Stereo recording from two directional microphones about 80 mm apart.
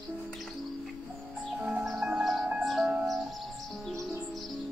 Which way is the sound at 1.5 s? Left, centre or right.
Centre.